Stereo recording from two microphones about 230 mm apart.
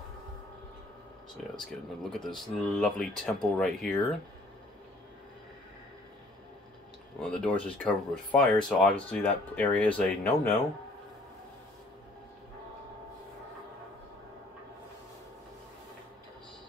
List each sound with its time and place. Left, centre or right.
1.3 s speech: centre
7.2 s speech: centre